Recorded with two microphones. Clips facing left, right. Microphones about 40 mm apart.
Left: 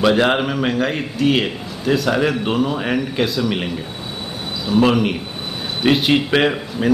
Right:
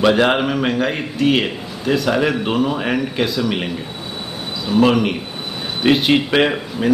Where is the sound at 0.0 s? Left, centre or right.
Centre.